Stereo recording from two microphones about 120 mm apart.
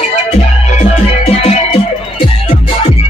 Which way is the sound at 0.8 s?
60° left (ahead or behind).